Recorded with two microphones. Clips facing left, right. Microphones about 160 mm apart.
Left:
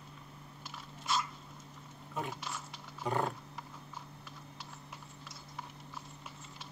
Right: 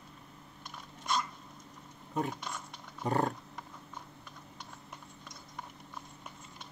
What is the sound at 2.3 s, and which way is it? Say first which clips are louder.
Speech: right 2 dB; 5° left (ahead or behind).